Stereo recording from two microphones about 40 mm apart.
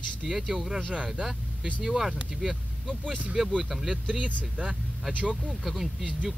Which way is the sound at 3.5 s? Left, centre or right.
Centre.